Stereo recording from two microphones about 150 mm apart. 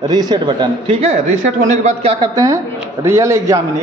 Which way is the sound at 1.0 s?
50° right (ahead or behind).